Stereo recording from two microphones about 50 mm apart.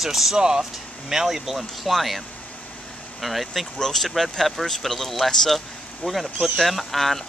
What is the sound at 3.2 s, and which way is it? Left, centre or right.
A man's voice, centre.